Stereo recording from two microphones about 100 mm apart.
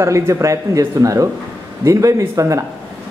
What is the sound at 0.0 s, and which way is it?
Speech, 30° right (ahead or behind).